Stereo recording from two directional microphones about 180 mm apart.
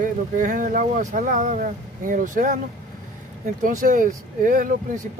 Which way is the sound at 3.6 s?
50° right (ahead or behind).